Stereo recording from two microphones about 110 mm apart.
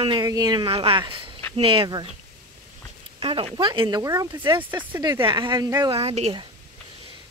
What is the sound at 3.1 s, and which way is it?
Speech, 55° right (ahead or behind).